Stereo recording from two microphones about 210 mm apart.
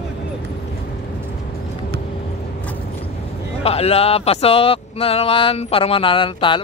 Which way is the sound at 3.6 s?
30° left (ahead or behind).